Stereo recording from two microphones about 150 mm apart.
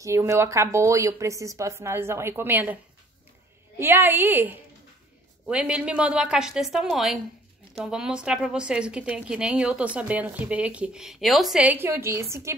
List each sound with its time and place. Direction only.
0.0 s a woman's voice: 20° right (ahead or behind)
3.8 s a woman's voice: 15° right (ahead or behind)